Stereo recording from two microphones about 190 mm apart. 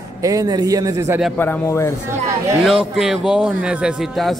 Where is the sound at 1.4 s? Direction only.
10° left (ahead or behind).